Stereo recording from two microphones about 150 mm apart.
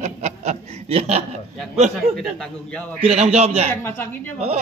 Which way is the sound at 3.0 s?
40° right (ahead or behind).